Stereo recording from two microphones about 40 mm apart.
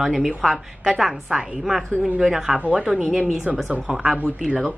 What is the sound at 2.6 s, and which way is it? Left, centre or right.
Speech, right.